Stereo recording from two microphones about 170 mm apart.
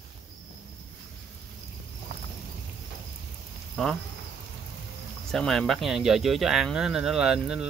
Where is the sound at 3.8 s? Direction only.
5° left (ahead or behind).